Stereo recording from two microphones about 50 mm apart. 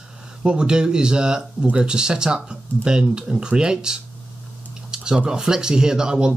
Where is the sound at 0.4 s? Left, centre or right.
Centre.